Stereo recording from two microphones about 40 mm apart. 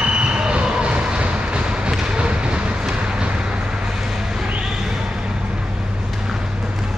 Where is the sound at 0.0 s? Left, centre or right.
Right.